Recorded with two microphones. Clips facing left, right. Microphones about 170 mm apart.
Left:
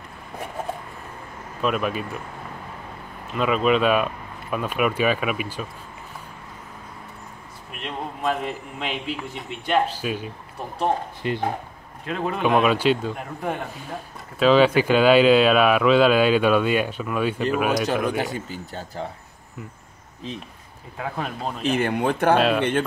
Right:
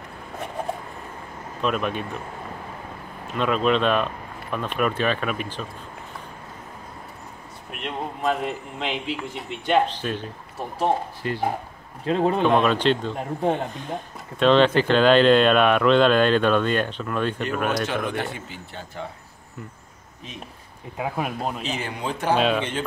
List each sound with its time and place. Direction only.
1.6 s a man's voice: 5° left (ahead or behind)
3.3 s speech: 5° left (ahead or behind)
7.8 s a man's voice: centre (ahead or behind)
11.2 s speech: 20° left (ahead or behind)
12.0 s speech: 30° right (ahead or behind)
12.4 s speech: 5° left (ahead or behind)
13.1 s speech: 30° right (ahead or behind)
14.4 s a man's voice: 5° left (ahead or behind)
18.3 s speech: 40° left (ahead or behind)
21.0 s a man's voice: 10° right (ahead or behind)
21.6 s speech: 55° left (ahead or behind)
22.4 s a man's voice: centre (ahead or behind)